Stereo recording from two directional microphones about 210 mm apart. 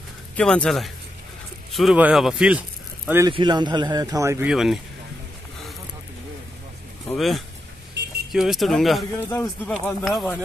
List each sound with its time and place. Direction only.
0.4 s speech: 5° left (ahead or behind)
7.1 s speech: centre (ahead or behind)